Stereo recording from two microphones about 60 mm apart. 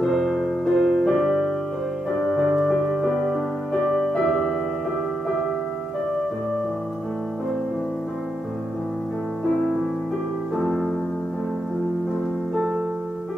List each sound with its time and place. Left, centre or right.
0.0 s music: centre
2.6 s music: centre